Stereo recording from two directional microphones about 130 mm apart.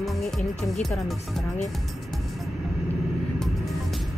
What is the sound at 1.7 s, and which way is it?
Music, centre (ahead or behind).